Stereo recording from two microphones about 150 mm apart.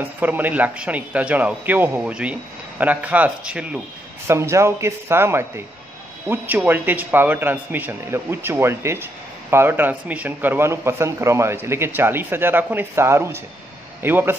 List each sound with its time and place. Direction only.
0.0 s speech: 10° right (ahead or behind)
4.3 s speech: 20° right (ahead or behind)